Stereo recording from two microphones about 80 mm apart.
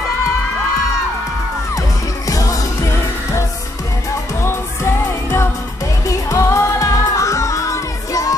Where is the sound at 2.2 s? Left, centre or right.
Left.